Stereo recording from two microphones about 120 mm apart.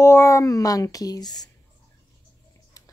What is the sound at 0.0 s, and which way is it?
Speech, 25° left (ahead or behind).